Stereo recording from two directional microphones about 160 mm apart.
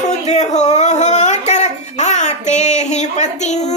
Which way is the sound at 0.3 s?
45° left (ahead or behind).